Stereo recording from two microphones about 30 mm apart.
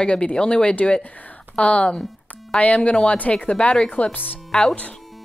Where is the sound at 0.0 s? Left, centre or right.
Left.